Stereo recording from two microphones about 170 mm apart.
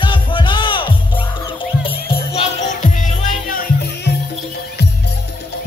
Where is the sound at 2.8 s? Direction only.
50° left (ahead or behind).